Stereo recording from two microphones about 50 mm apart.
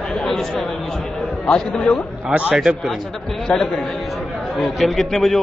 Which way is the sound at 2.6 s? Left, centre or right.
Centre.